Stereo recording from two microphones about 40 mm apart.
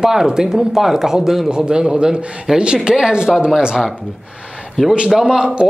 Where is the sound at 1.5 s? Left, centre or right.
Centre.